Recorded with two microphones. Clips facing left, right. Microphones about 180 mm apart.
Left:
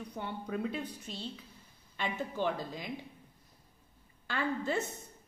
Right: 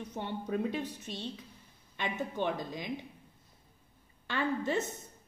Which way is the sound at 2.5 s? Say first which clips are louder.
Right 1 dB; 20° right (ahead or behind).